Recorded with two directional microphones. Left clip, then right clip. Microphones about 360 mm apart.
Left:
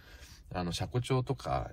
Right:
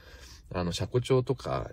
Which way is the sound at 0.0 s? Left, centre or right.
Centre.